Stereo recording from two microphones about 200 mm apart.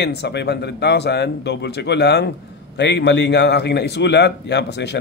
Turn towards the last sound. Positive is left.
turn(degrees=60)  # may be behind; listen again after turning